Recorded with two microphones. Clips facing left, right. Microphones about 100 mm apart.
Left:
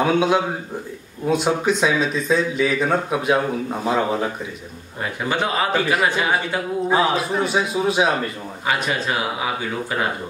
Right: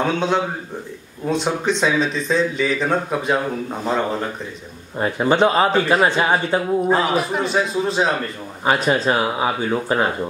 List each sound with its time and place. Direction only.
0.0 s a man's voice: 5° left (ahead or behind)
5.0 s speech: 30° right (ahead or behind)
6.9 s speech: 5° left (ahead or behind)
8.6 s speech: 35° right (ahead or behind)